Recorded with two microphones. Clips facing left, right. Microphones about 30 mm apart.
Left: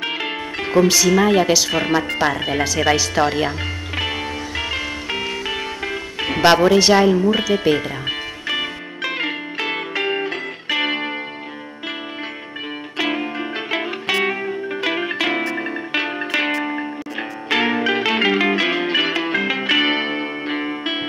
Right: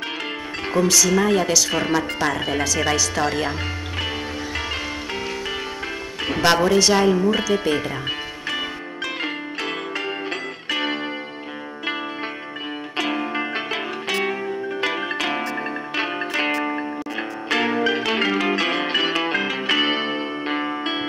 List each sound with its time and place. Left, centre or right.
0.7 s speech: left
6.2 s speech: centre
9.0 s music: left
12.9 s music: centre
16.5 s music: centre
17.5 s music: left
20.4 s music: centre